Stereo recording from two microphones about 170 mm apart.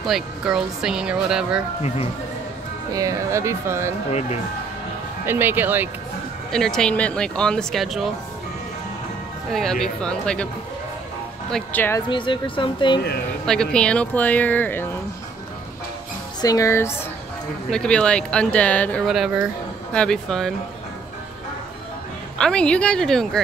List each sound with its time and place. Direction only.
0.0 s speech: centre (ahead or behind)
2.9 s speech: 20° right (ahead or behind)
4.1 s speech: 40° left (ahead or behind)
5.2 s speech: 10° right (ahead or behind)
6.5 s speech: 5° left (ahead or behind)
9.5 s speech: centre (ahead or behind)
11.5 s speech: 10° left (ahead or behind)
12.1 s speech: 30° left (ahead or behind)
13.5 s speech: 5° left (ahead or behind)
16.3 s speech: 20° left (ahead or behind)
17.6 s speech: 5° left (ahead or behind)
22.4 s speech: 5° left (ahead or behind)